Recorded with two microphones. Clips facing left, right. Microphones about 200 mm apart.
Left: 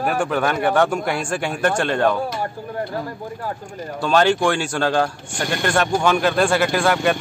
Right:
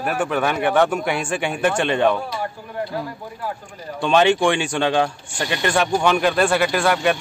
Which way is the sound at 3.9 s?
Centre (ahead or behind).